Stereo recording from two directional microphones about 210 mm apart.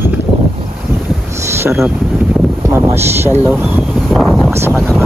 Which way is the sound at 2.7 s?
15° right (ahead or behind).